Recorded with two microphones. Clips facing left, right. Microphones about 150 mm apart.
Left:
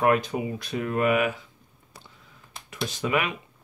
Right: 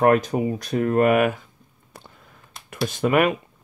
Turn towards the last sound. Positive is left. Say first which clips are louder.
# right 7 dB
turn(degrees=-50)  # may be behind; listen again after turning